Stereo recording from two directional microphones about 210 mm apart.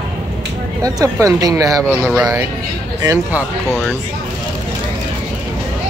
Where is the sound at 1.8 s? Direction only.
5° left (ahead or behind).